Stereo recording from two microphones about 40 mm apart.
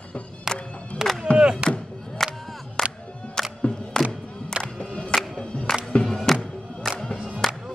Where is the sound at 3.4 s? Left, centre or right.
Centre.